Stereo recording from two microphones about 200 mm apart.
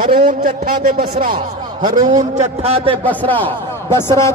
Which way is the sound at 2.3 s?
35° right (ahead or behind).